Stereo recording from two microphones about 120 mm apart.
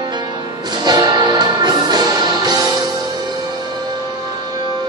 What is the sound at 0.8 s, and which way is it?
Music, 35° right (ahead or behind).